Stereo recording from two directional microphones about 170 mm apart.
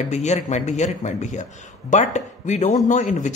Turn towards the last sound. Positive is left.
turn(degrees=45)  # may be behind; listen again after turning